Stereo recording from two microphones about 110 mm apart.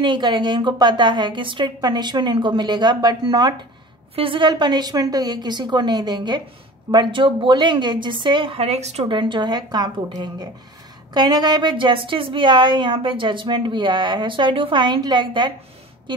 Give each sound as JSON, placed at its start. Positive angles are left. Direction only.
{"t": 0.0, "sound": "a woman's voice", "side_deg": -45}
{"t": 4.1, "sound": "a woman's voice", "side_deg": -55}
{"t": 8.6, "sound": "speech", "side_deg": -80}
{"t": 9.1, "sound": "a woman's voice", "side_deg": -45}